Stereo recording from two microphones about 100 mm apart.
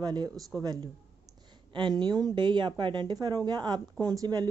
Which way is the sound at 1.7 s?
50° right (ahead or behind).